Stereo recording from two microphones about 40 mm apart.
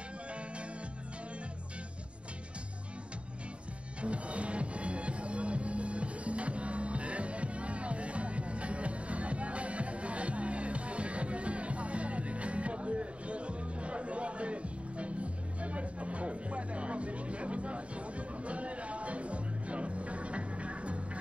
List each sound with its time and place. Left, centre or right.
4.0 s music: right